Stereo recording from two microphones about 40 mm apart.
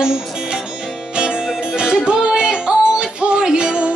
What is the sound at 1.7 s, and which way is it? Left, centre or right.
Music, centre.